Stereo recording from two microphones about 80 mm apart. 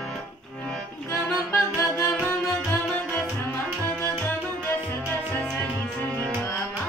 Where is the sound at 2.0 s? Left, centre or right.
Left.